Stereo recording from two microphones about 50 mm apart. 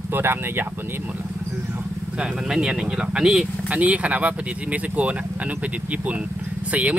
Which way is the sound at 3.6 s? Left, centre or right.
Right.